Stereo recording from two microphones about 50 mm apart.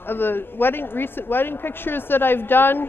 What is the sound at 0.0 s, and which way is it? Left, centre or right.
Speech, left.